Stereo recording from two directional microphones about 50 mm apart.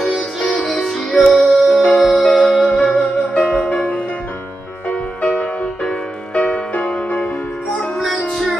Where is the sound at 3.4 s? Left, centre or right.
Left.